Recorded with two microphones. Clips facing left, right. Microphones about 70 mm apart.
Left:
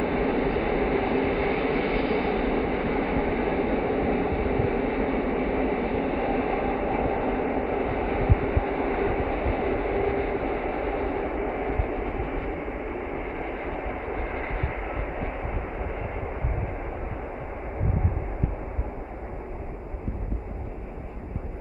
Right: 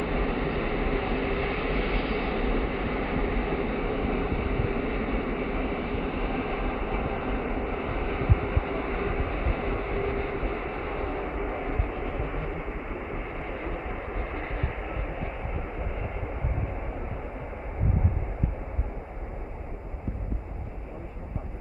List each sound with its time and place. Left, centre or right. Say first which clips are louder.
0.0 s vehicle: left 4 dB; left
14.3 s vehicle: left 3 dB; left